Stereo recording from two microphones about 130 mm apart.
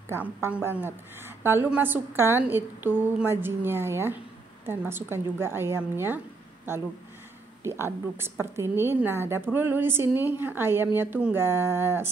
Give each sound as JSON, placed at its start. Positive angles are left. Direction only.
{"t": 0.1, "sound": "a woman's voice", "side_deg": -15}